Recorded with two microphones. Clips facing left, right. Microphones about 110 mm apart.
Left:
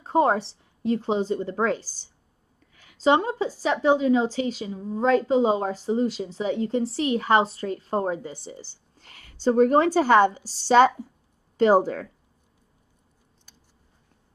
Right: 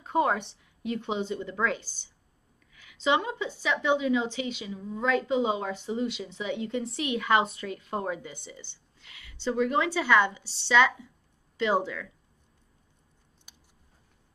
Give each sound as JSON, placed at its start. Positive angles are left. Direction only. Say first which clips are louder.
{"t": 0.0, "sound": "a woman's voice", "louder": "left 5 dB", "side_deg": 35}